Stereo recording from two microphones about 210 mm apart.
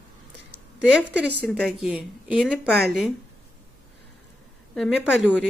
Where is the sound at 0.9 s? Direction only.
5° right (ahead or behind).